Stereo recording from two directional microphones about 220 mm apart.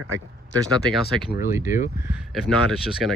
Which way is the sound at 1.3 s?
40° left (ahead or behind).